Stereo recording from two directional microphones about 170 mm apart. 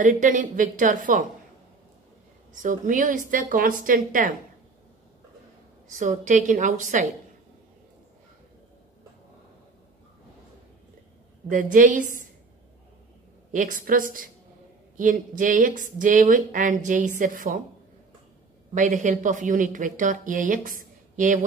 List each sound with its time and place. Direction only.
0.0 s speech: 50° right (ahead or behind)
2.6 s speech: 50° right (ahead or behind)
5.9 s speech: 50° right (ahead or behind)
11.4 s speech: 50° right (ahead or behind)
13.5 s speech: 50° right (ahead or behind)
18.8 s speech: 45° right (ahead or behind)